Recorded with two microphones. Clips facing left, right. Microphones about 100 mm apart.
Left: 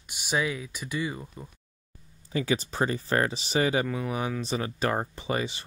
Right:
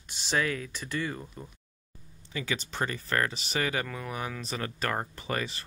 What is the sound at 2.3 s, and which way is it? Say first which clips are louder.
Speech: left 6 dB; 30° left (ahead or behind).